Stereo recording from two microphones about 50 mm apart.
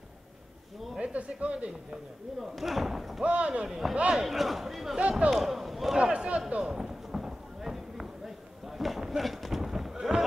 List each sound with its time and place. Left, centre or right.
0.9 s speech: right
2.4 s speech: centre
3.3 s speech: right
3.6 s speech: centre
3.9 s speech: right
4.2 s speech: centre
5.3 s a sound: centre
5.9 s a sound: centre
6.6 s clip-clop: centre
8.6 s a sound: centre